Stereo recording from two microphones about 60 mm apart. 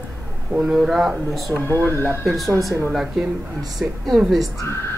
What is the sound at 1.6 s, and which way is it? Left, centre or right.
Speech, right.